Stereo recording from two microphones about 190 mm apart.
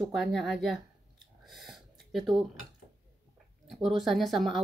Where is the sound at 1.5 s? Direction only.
Centre (ahead or behind).